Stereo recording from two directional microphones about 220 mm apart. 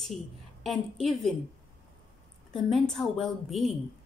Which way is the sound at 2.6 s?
Centre (ahead or behind).